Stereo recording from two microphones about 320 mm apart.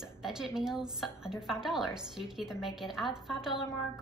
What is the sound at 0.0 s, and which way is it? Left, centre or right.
A woman's voice, centre.